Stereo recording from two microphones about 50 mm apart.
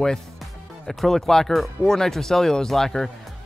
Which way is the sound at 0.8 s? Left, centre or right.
Centre.